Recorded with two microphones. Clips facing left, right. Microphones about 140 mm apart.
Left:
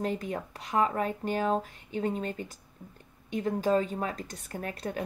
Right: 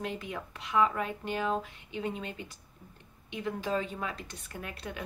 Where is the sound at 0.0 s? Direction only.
40° left (ahead or behind).